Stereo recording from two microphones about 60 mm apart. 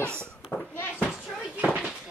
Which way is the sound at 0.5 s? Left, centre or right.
Left.